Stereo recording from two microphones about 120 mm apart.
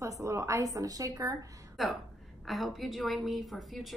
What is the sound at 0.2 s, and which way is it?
A woman's voice, 25° right (ahead or behind).